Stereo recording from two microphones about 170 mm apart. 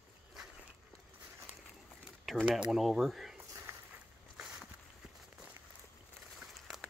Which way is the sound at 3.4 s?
15° right (ahead or behind).